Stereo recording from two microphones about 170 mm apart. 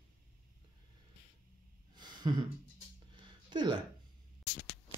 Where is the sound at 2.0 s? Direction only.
25° right (ahead or behind).